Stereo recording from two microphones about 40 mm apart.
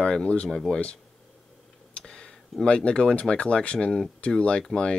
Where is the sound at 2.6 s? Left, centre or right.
Left.